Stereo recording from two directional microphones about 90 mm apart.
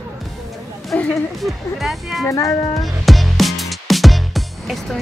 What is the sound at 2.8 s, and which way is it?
Music, centre (ahead or behind).